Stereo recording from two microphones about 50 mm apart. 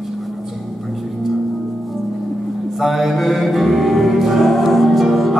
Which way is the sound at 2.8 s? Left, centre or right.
Centre.